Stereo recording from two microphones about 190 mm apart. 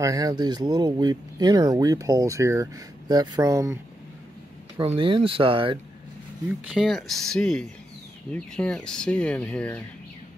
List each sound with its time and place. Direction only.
0.0 s speech: 20° right (ahead or behind)
4.7 s speech: 30° right (ahead or behind)
6.7 s speech: centre (ahead or behind)